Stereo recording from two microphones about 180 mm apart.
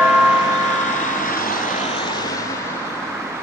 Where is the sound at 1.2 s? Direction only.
50° left (ahead or behind).